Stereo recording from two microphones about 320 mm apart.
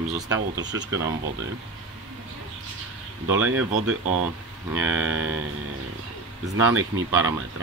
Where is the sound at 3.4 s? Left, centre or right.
Right.